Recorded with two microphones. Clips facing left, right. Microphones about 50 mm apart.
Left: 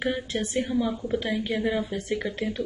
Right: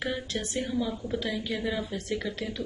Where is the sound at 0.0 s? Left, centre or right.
Left.